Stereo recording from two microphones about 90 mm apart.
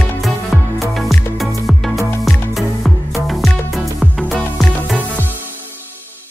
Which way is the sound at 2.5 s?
Centre (ahead or behind).